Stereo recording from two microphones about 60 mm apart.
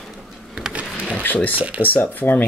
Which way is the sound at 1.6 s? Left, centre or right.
Right.